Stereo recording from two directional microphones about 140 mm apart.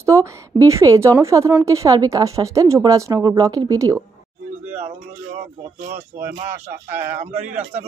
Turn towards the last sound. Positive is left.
turn(degrees=-50)  # may be behind; listen again after turning